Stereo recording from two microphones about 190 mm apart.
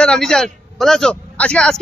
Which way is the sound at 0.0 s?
5° left (ahead or behind).